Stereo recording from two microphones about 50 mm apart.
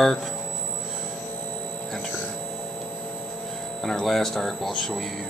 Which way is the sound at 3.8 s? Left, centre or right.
Centre.